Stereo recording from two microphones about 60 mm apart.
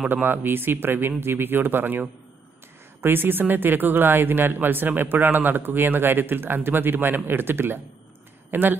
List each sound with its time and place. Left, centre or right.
0.1 s speech: right